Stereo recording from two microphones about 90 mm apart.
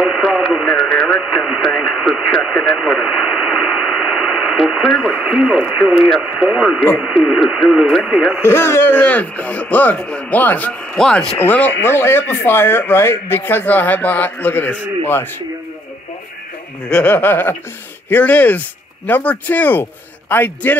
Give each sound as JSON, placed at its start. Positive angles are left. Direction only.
{"t": 0.0, "sound": "radio", "side_deg": 0}
{"t": 5.1, "sound": "speech", "side_deg": -5}
{"t": 8.4, "sound": "speech", "side_deg": 25}
{"t": 11.0, "sound": "speech", "side_deg": 5}
{"t": 11.3, "sound": "speech", "side_deg": 20}
{"t": 16.9, "sound": "speech", "side_deg": 20}